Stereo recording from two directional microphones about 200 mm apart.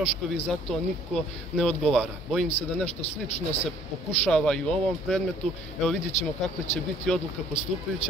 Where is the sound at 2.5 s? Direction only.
30° left (ahead or behind).